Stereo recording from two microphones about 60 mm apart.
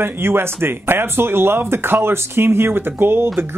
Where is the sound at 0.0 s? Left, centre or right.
Right.